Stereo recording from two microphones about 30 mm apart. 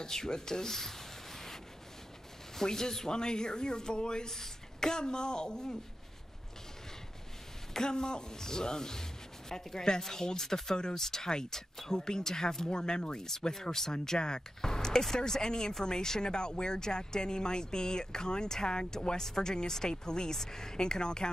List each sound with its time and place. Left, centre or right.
0.0 s speech: left
2.5 s speech: centre
4.3 s speech: centre
7.7 s speech: left